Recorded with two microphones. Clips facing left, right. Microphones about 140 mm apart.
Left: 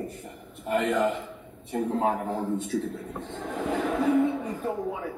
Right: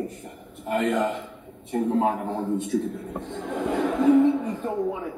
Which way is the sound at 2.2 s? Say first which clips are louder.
Right 1 dB; centre (ahead or behind).